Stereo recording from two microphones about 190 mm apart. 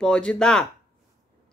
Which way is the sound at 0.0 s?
5° left (ahead or behind).